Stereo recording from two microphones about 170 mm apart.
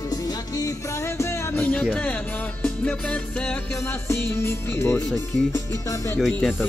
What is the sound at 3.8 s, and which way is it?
Speech, 15° left (ahead or behind).